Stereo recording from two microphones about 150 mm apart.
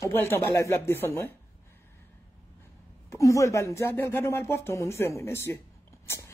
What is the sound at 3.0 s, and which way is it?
Speech, 20° left (ahead or behind).